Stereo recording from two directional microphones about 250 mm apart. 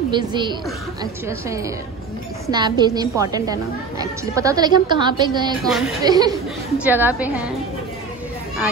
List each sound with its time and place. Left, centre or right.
0.1 s a woman's voice: centre
2.4 s a woman's voice: centre
5.6 s speech: centre
6.0 s a woman's voice: centre